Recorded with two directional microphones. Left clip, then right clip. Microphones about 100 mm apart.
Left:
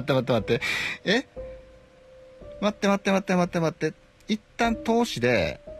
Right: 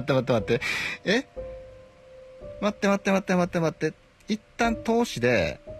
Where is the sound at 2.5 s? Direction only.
5° left (ahead or behind).